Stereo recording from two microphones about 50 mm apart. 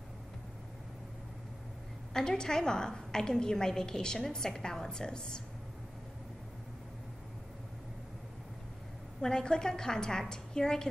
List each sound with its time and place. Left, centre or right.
2.1 s a woman's voice: centre
9.2 s a woman's voice: centre